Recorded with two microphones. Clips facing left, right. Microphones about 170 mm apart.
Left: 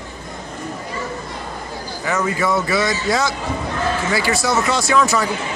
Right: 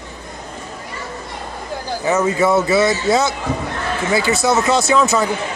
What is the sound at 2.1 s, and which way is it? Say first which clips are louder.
Speech: right 4 dB; 25° right (ahead or behind).